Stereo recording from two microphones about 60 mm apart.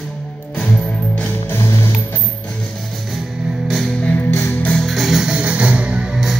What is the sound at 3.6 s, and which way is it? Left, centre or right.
Music, centre.